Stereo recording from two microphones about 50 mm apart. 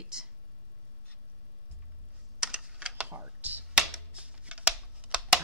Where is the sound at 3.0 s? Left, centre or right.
Right.